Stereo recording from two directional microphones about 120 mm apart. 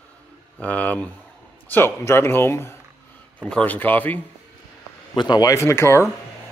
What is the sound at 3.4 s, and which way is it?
Speech, 10° left (ahead or behind).